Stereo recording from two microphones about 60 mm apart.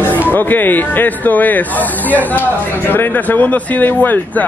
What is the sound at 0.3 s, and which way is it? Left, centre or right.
Speech, left.